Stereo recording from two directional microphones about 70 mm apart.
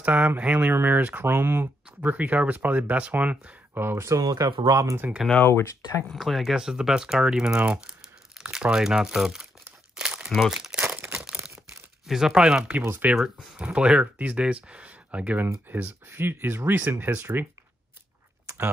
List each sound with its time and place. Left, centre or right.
0.0 s speech: right
3.7 s speech: right
4.2 s speech: right
5.4 s speech: left
6.0 s speech: centre
9.9 s crumpling: centre
10.3 s speech: centre
10.8 s a sound: right
11.1 s a sound: centre
12.1 s speech: centre; by 17.5 s right